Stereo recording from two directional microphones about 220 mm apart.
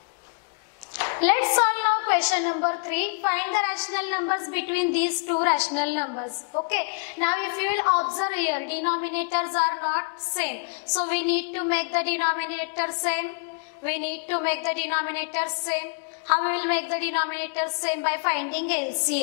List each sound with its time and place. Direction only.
0.9 s a sound: 15° left (ahead or behind)
2.6 s a woman's voice: 20° left (ahead or behind)
6.0 s a woman's voice: 25° left (ahead or behind)
6.7 s a woman's voice: 15° left (ahead or behind)